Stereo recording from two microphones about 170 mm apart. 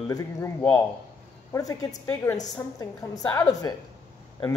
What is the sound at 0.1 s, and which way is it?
Speech, 20° left (ahead or behind).